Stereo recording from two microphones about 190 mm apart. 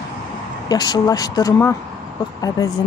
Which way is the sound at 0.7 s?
20° left (ahead or behind).